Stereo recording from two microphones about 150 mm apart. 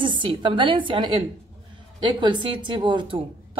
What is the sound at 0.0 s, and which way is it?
A woman's voice, 30° right (ahead or behind).